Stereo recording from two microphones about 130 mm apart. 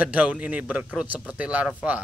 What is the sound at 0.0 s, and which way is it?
A man's voice, 10° right (ahead or behind).